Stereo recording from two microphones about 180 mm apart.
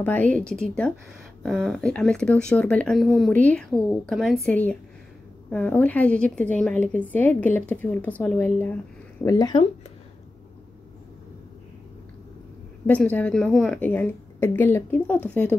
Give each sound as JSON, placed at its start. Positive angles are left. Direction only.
{"t": 0.0, "sound": "a woman's voice", "side_deg": 10}
{"t": 12.8, "sound": "a woman's voice", "side_deg": 10}